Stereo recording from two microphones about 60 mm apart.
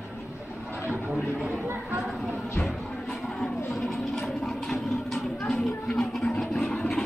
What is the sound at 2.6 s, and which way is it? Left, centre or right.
Music, centre.